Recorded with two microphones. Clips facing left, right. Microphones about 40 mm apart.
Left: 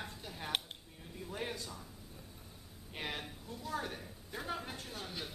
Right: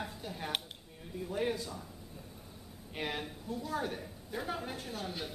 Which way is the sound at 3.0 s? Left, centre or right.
Centre.